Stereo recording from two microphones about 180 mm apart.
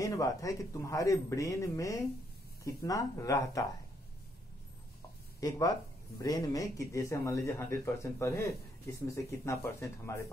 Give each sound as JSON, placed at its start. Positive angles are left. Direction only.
{"t": 0.0, "sound": "speech", "side_deg": 20}
{"t": 5.4, "sound": "speech", "side_deg": 20}